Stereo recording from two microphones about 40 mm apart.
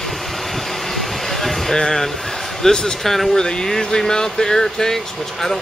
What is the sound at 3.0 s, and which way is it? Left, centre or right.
Speech, centre.